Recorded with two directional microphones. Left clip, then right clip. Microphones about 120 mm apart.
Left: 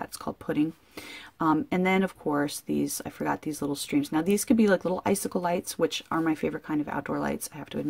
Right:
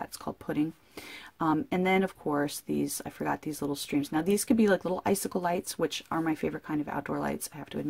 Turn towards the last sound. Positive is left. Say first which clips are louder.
# left 3 dB
turn(degrees=0)  # may be behind; listen again after turning